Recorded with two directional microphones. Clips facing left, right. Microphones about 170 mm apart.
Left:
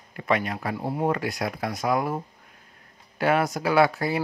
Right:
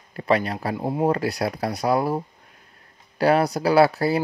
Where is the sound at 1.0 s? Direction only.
35° right (ahead or behind).